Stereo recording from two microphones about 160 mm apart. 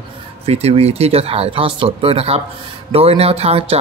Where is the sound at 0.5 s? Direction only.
40° right (ahead or behind).